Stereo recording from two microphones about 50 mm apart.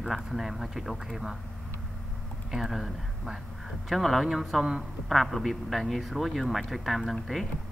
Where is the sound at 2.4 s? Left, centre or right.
Centre.